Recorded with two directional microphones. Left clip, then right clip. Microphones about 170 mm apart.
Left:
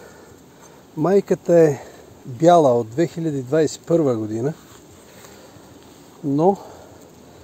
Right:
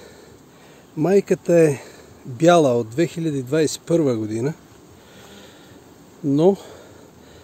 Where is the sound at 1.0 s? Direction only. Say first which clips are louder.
Even; 35° right (ahead or behind).